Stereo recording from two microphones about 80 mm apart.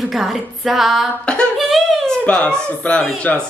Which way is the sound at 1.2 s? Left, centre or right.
Centre.